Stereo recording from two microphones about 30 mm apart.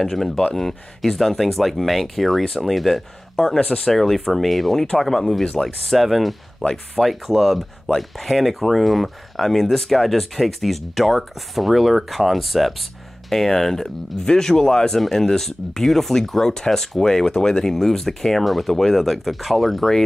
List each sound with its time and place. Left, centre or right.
0.0 s speech: centre
3.6 s speech: centre
4.0 s speech: centre
6.6 s speech: left
7.2 s speech: centre
13.3 s speech: centre
14.2 s speech: left; by 19.9 s centre